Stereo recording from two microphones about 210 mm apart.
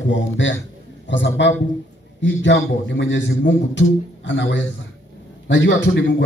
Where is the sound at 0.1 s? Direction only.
60° left (ahead or behind).